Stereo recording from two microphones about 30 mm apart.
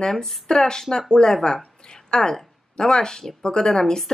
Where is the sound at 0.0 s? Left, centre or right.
Centre.